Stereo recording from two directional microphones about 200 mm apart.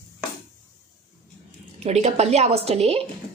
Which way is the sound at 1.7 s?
30° right (ahead or behind).